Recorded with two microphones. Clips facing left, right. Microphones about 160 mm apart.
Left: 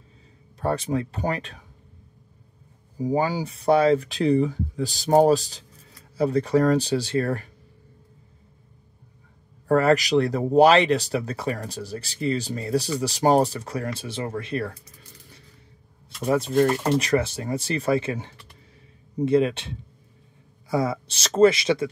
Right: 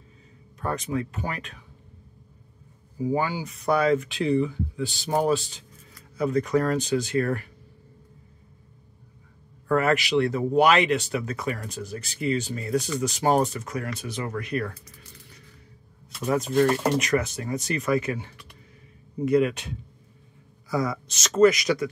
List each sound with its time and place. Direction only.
0.6 s speech: 30° left (ahead or behind)
3.0 s speech: 35° left (ahead or behind)
9.7 s speech: 35° left (ahead or behind)
16.3 s speech: 30° left (ahead or behind)
19.2 s speech: 30° left (ahead or behind)